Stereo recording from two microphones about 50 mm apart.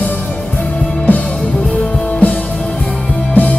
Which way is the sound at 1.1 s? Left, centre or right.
Left.